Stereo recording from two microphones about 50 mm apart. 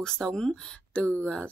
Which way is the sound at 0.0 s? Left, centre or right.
Centre.